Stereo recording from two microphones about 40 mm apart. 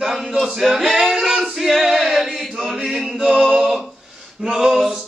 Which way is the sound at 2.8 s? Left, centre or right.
Centre.